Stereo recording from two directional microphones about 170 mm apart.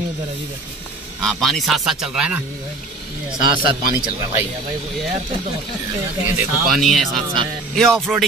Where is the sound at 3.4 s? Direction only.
30° right (ahead or behind).